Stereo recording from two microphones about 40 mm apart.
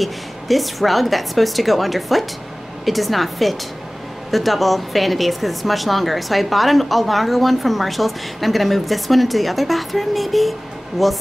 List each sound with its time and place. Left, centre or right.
0.0 s speech: centre